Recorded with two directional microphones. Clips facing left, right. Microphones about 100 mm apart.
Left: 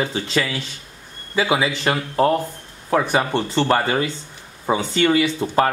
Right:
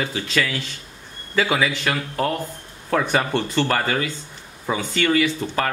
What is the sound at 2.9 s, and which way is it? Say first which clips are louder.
Speech: left 2 dB; 15° left (ahead or behind).